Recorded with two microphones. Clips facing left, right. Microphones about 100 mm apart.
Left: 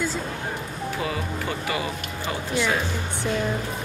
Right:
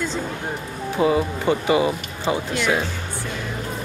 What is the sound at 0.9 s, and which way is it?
Speech, 25° right (ahead or behind).